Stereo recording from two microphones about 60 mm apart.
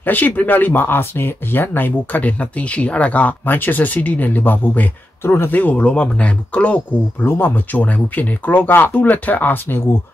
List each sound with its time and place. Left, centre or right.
0.0 s speech: left
5.2 s speech: left
5.5 s speech: left
7.2 s speech: left